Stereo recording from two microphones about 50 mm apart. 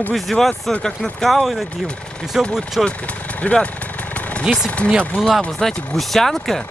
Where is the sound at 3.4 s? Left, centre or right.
Left.